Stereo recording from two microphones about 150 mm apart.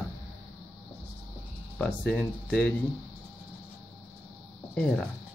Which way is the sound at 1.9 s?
5° left (ahead or behind).